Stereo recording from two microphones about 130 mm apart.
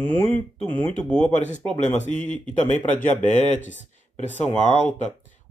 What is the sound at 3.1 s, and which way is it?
Speech, 65° left (ahead or behind).